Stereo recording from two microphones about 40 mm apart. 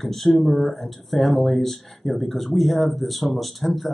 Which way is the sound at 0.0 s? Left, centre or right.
Centre.